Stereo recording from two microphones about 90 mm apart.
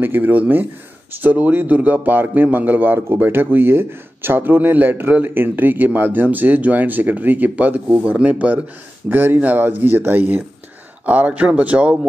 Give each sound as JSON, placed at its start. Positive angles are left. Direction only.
{"t": 0.0, "sound": "a man's voice", "side_deg": -20}